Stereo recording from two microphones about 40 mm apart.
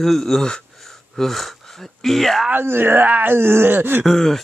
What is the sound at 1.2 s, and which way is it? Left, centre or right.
Speech, centre.